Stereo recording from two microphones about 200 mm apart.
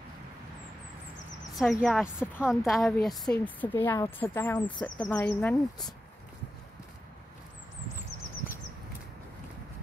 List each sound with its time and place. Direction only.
1.6 s a woman's voice: centre (ahead or behind)
4.6 s speech: 20° left (ahead or behind)
5.1 s speech: 5° left (ahead or behind)